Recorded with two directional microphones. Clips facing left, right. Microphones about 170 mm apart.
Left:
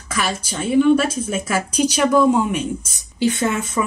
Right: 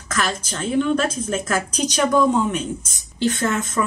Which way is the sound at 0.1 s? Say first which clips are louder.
Left 1 dB; 10° left (ahead or behind).